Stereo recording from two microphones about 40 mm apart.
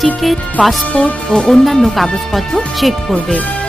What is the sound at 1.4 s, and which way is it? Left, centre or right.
Speech, centre.